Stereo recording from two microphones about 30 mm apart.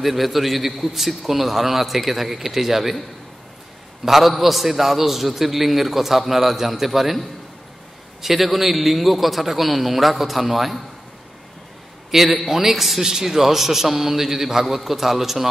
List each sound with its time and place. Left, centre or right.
0.0 s a man's voice: centre
4.0 s a man's voice: centre
8.2 s a man's voice: centre
12.1 s a man's voice: centre
12.7 s a man's voice: centre